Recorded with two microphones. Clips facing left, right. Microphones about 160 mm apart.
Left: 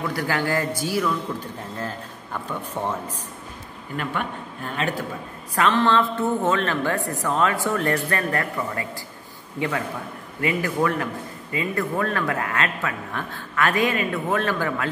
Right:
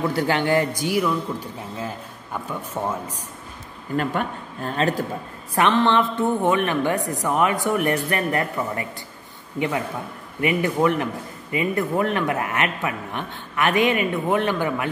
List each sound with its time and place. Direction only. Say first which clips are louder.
0.1 s a woman's voice: right 4 dB; 25° right (ahead or behind)
3.9 s speech: right 4 dB; 40° right (ahead or behind)
5.5 s a woman's voice: right 1 dB; 20° right (ahead or behind)